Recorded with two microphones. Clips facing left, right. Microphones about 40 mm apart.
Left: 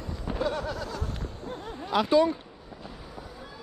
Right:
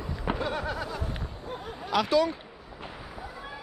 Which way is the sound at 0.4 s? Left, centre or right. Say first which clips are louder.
Left 1 dB; centre.